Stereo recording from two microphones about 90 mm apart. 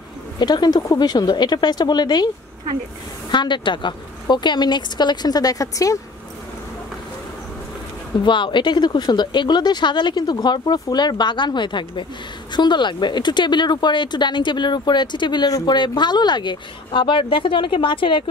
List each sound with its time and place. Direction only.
0.4 s speech: 50° left (ahead or behind)
3.3 s speech: 60° left (ahead or behind); by 5.9 s 40° left (ahead or behind)
8.2 s speech: 65° left (ahead or behind)